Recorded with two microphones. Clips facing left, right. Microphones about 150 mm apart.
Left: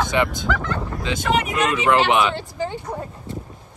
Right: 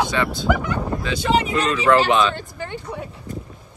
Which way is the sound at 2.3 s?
60° right (ahead or behind).